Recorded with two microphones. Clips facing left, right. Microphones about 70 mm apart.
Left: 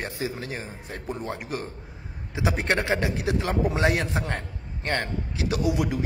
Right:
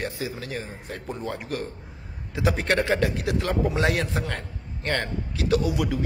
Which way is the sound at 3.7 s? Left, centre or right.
Left.